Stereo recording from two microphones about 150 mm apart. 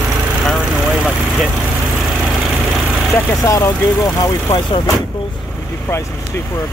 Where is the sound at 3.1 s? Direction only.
20° left (ahead or behind).